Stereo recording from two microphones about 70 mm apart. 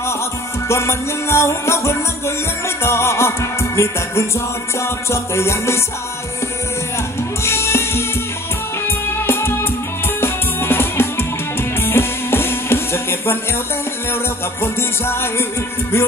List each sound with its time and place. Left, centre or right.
0.7 s music: left
7.4 s music: left
14.6 s music: left